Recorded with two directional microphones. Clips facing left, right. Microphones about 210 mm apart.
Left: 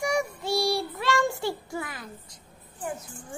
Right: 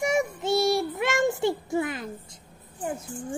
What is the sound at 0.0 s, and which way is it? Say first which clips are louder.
Child singing: right 2 dB; 20° right (ahead or behind).